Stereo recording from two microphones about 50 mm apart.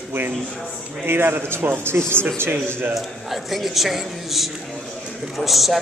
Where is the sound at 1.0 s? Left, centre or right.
Right.